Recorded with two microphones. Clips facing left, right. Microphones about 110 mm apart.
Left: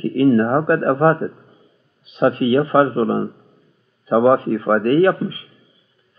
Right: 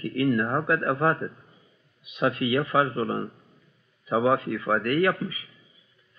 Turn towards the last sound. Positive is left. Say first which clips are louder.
# left 9 dB
turn(degrees=35)  # may be behind; listen again after turning